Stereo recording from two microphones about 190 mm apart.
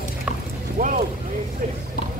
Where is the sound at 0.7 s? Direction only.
45° right (ahead or behind).